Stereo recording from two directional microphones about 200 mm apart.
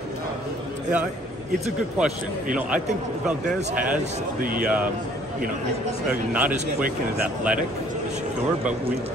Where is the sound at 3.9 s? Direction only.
45° right (ahead or behind).